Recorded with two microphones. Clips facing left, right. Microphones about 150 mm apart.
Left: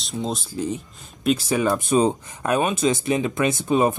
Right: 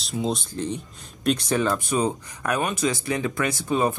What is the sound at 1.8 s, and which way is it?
Speech, 25° left (ahead or behind).